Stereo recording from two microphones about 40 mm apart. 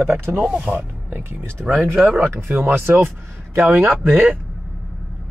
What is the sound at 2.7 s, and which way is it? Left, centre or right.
Speech, right.